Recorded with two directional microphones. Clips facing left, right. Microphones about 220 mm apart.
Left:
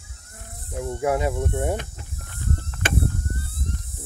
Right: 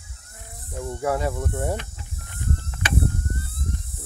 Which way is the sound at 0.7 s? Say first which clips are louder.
Left 2 dB; 15° left (ahead or behind).